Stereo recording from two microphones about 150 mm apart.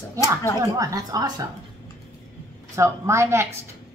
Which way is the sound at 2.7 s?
15° right (ahead or behind).